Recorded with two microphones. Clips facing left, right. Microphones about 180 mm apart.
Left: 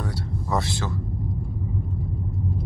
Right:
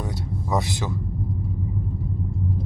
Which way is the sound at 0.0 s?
15° right (ahead or behind).